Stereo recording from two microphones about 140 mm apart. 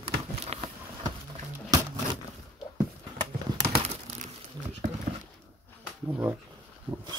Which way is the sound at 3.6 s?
40° right (ahead or behind).